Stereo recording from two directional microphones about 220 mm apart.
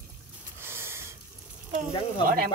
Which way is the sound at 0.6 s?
10° right (ahead or behind).